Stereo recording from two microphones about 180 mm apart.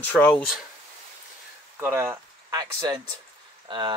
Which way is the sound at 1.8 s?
15° right (ahead or behind).